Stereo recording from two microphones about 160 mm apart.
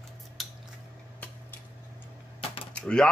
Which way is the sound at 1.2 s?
10° left (ahead or behind).